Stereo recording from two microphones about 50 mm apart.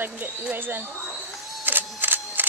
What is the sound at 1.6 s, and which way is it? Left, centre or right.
Single-lens reflex camera, right.